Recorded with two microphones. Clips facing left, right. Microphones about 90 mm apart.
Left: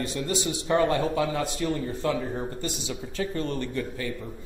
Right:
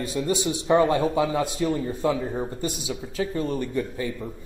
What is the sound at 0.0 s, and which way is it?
A man's voice, 15° right (ahead or behind).